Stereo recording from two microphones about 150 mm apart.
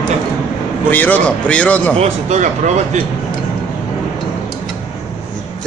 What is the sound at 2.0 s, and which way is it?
Speech, 50° right (ahead or behind).